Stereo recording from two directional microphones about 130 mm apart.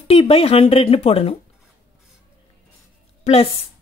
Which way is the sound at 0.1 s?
45° left (ahead or behind).